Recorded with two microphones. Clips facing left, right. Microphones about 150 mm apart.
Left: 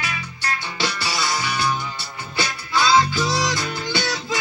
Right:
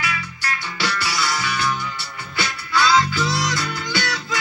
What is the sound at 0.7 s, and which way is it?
Music, 25° left (ahead or behind).